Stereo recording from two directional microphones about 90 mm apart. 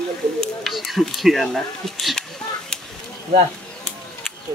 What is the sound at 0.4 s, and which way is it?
Speech, centre (ahead or behind).